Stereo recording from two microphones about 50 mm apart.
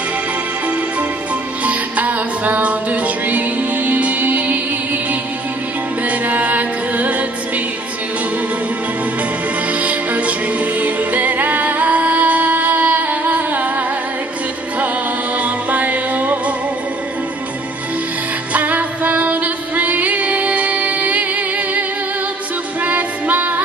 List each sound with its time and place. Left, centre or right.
1.6 s music: right
6.0 s music: right
9.7 s music: right
15.3 s music: right
18.5 s music: right